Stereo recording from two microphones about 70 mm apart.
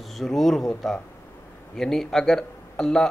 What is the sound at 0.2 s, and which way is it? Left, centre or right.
Speech, centre.